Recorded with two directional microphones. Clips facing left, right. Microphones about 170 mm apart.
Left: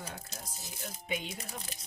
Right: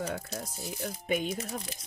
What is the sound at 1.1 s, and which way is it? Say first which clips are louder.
Speech: right 8 dB; 50° right (ahead or behind).